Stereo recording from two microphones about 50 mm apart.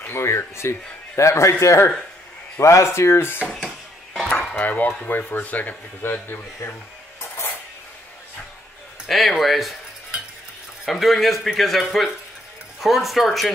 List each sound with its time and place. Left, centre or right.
0.0 s speech: left
3.6 s a sound: centre
4.6 s speech: left
9.0 s speech: centre
10.9 s speech: centre